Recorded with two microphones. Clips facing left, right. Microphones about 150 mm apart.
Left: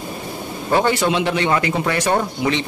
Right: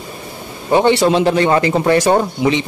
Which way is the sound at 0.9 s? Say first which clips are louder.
Right 6 dB; 35° right (ahead or behind).